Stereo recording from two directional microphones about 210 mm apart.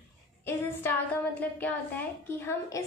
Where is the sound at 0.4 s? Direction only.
10° left (ahead or behind).